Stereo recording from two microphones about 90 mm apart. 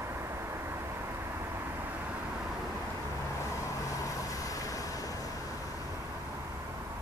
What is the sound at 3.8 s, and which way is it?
Vehicle, 40° left (ahead or behind).